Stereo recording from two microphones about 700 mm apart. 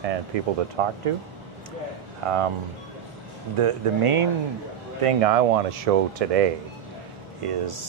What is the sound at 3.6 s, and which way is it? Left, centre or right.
Speech, right.